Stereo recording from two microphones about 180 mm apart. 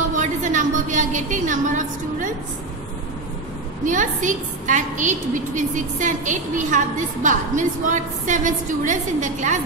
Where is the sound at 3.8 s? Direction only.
45° right (ahead or behind).